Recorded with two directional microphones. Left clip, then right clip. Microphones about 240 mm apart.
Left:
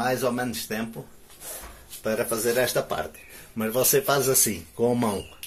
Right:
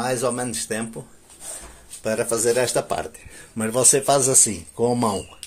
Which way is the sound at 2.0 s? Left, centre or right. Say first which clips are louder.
Right 3 dB; centre.